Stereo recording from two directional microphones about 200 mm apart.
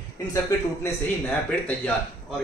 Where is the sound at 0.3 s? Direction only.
15° left (ahead or behind).